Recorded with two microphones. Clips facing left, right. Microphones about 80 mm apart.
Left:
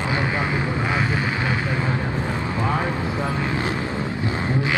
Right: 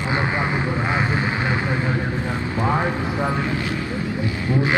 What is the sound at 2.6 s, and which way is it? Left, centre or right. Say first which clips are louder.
Vehicle: right 3 dB; right.